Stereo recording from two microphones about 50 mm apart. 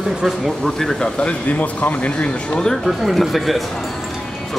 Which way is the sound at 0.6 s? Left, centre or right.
Centre.